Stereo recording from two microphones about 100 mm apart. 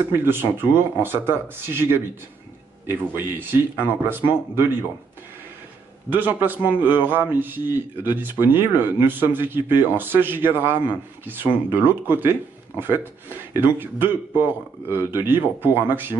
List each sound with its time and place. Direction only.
0.2 s speech: 25° right (ahead or behind)
6.0 s speech: 20° right (ahead or behind)